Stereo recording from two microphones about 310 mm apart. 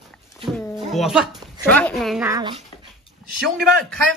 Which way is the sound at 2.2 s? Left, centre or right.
Centre.